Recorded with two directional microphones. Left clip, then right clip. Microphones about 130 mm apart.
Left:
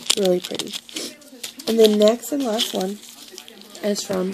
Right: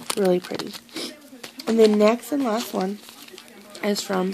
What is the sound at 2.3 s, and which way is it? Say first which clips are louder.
Speech: left 2 dB; 30° right (ahead or behind).